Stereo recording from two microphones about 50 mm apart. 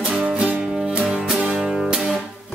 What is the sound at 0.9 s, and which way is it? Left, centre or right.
Music, centre.